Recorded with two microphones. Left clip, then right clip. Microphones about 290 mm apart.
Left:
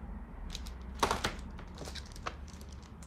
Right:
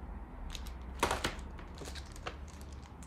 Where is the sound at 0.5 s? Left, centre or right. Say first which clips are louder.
Left 2 dB; centre.